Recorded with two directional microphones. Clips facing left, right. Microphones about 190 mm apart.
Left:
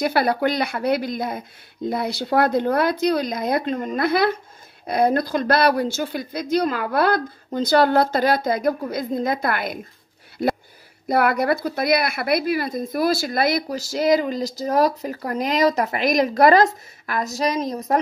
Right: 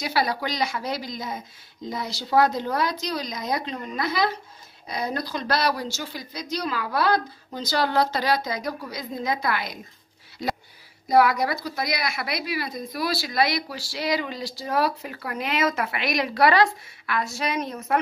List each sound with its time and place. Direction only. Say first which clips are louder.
0.0 s speech: left 6 dB; 55° left (ahead or behind)
10.4 s a sound: left 7 dB; 60° left (ahead or behind)
11.1 s speech: left 1 dB; 55° left (ahead or behind); by 17.9 s 35° left (ahead or behind)